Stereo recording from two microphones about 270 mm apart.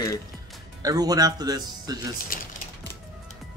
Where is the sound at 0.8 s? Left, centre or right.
Centre.